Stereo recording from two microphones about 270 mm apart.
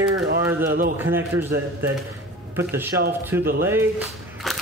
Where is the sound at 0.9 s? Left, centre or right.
Centre.